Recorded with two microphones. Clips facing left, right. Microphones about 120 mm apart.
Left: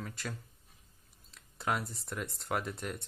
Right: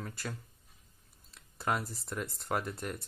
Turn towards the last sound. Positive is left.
turn(degrees=0)  # may be behind; listen again after turning